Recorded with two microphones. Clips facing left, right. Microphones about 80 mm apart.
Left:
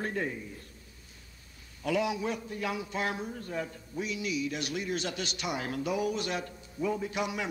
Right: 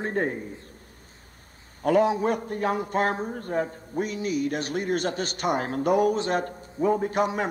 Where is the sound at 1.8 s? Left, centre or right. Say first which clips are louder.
Right 9 dB; right.